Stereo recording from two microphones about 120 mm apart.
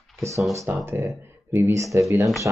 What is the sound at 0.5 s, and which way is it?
Speech, 25° right (ahead or behind).